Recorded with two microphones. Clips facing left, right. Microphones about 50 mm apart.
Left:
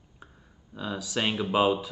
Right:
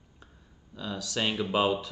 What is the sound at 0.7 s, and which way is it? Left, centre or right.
Speech, centre.